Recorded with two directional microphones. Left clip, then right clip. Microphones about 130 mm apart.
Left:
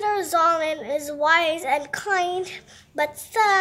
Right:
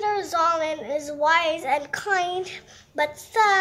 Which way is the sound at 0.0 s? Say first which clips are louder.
Left 2 dB; 30° left (ahead or behind).